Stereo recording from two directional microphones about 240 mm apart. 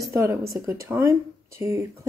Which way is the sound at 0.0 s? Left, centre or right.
Centre.